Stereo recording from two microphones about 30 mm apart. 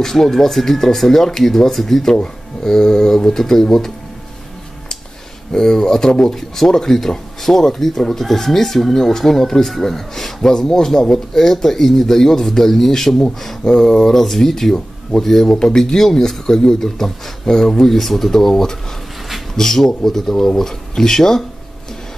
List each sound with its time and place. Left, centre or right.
0.0 s speech: centre
2.6 s speech: centre
5.5 s speech: left
6.3 s speech: centre
13.7 s speech: centre
15.5 s speech: left